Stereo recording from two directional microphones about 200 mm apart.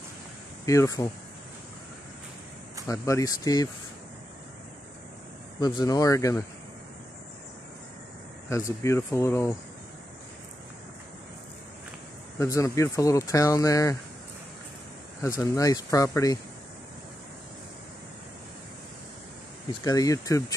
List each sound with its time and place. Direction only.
0.7 s speech: 15° left (ahead or behind)
2.9 s speech: 15° left (ahead or behind)
5.6 s speech: 20° left (ahead or behind)
8.5 s speech: 15° left (ahead or behind)
12.4 s speech: 15° left (ahead or behind)
15.2 s speech: 15° left (ahead or behind)
19.8 s speech: 20° left (ahead or behind)